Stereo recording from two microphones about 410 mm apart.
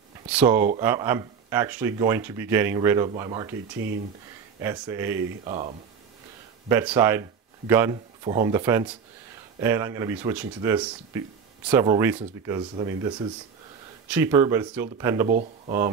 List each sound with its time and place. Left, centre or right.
0.3 s speech: centre
4.6 s speech: centre
15.2 s speech: centre